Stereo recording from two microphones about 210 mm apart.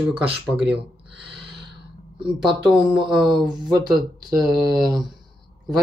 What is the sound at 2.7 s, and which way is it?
Speech, 5° right (ahead or behind).